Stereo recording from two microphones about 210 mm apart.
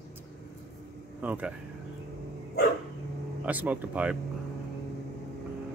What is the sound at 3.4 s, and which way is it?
Speech, 5° right (ahead or behind).